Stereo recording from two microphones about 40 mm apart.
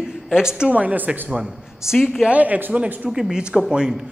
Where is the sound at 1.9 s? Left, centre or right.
Centre.